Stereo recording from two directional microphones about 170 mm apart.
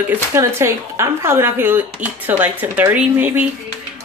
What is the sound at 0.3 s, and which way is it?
Speech, 15° right (ahead or behind).